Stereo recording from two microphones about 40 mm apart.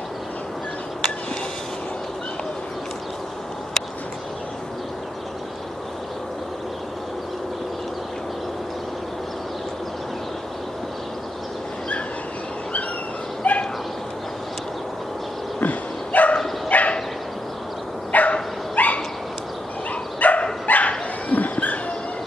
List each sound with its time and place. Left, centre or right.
13.4 s bow-wow: left
15.6 s bow-wow: left
18.1 s dog: left
18.8 s bow-wow: left
20.2 s dog: left